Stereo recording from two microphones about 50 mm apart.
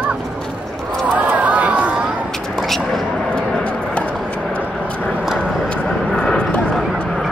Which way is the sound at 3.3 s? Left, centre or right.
Left.